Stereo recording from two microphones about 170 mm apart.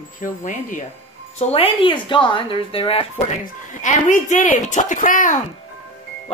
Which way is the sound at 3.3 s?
45° left (ahead or behind).